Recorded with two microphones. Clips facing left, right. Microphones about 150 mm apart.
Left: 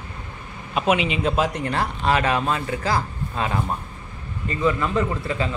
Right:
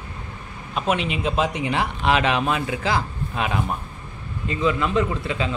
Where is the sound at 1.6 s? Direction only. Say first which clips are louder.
Right 1 dB; 15° right (ahead or behind).